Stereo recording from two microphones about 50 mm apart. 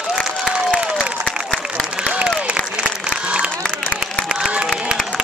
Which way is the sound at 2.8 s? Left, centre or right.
Centre.